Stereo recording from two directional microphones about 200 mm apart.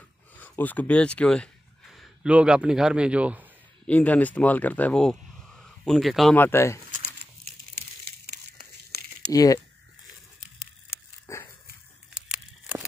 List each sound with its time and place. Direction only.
0.4 s speech: 10° left (ahead or behind)
3.8 s speech: 5° left (ahead or behind)
9.3 s speech: 15° left (ahead or behind)
11.3 s dog: 15° left (ahead or behind)
12.3 s a sound: 5° right (ahead or behind)